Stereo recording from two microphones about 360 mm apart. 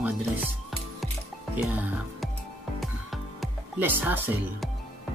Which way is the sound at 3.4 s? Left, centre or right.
Centre.